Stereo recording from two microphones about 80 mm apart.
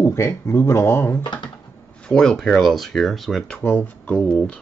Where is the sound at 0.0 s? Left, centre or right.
Left.